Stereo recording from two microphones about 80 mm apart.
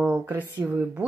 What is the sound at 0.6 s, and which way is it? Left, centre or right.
Speech, right.